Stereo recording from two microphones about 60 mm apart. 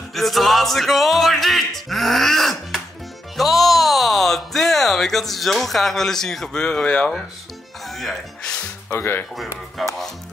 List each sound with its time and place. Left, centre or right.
0.1 s music: centre
7.9 s music: centre
8.9 s speech: left
9.8 s music: centre